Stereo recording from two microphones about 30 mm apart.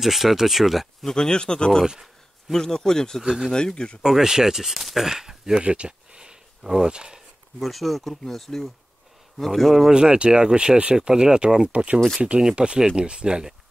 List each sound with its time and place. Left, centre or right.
0.0 s speech: centre
1.0 s speech: centre
1.3 s speech: left
3.2 s speech: centre
3.5 s speech: left
4.1 s speech: centre
5.6 s a sound: right
6.6 s speech: centre
6.9 s speech: right
7.6 s speech: centre
9.8 s speech: right
11.7 s speech: right
12.5 s speech: right